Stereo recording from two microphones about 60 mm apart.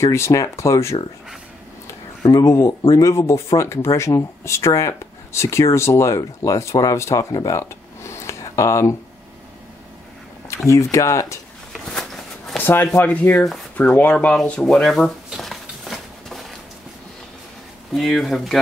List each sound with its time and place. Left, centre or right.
0.0 s speech: left
2.2 s speech: left
10.5 s speech: left
11.7 s a sound: centre
12.5 s speech: left; by 14.7 s centre
14.7 s speech: centre
15.2 s a sound: centre
17.9 s speech: centre